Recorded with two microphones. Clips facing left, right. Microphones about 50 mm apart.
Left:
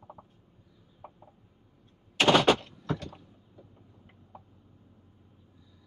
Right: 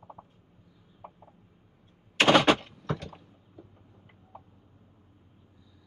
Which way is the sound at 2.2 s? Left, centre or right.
Centre.